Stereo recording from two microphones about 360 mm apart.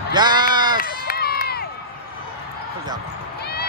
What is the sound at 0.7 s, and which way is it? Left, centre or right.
Run, left.